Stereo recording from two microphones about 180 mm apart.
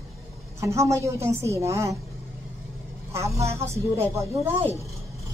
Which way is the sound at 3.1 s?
15° right (ahead or behind).